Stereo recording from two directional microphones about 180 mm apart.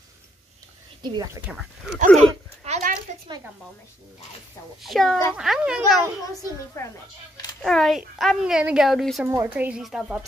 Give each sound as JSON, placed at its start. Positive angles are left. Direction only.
{"t": 1.0, "sound": "speech", "side_deg": -20}
{"t": 1.5, "sound": "a woman's voice", "side_deg": -5}
{"t": 2.1, "sound": "a sound", "side_deg": -40}
{"t": 4.8, "sound": "a woman's voice", "side_deg": 0}
{"t": 7.6, "sound": "a woman's voice", "side_deg": 0}
{"t": 9.3, "sound": "speech", "side_deg": -10}